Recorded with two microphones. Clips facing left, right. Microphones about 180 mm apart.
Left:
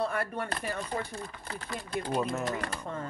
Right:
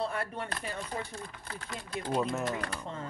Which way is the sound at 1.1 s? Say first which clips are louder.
Left 3 dB; centre (ahead or behind).